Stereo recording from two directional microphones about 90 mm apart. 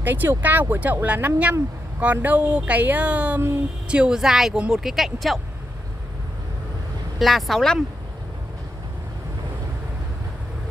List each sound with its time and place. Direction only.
0.0 s speech: 20° right (ahead or behind); by 5.4 s centre (ahead or behind)
7.2 s speech: centre (ahead or behind)